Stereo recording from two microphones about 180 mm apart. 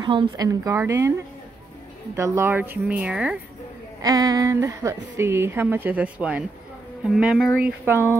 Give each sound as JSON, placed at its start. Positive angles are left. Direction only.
{"t": 0.0, "sound": "a woman's voice", "side_deg": -25}
{"t": 2.1, "sound": "a woman's voice", "side_deg": -15}
{"t": 4.0, "sound": "a woman's voice", "side_deg": -20}